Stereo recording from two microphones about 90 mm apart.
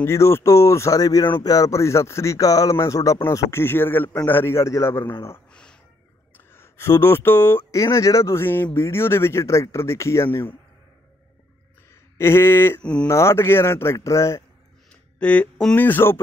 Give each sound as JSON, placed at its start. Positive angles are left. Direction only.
{"t": 0.0, "sound": "speech", "side_deg": 30}
{"t": 5.5, "sound": "a sound", "side_deg": 10}
{"t": 6.3, "sound": "speech", "side_deg": 25}
{"t": 7.7, "sound": "speech", "side_deg": 35}
{"t": 12.2, "sound": "speech", "side_deg": 30}
{"t": 12.8, "sound": "speech", "side_deg": 10}
{"t": 13.1, "sound": "speech", "side_deg": 30}
{"t": 14.9, "sound": "a sound", "side_deg": 15}
{"t": 15.7, "sound": "speech", "side_deg": 20}